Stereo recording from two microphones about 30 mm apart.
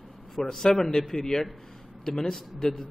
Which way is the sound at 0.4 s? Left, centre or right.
Centre.